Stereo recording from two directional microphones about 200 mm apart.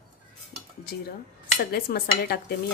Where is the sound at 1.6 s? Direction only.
50° left (ahead or behind).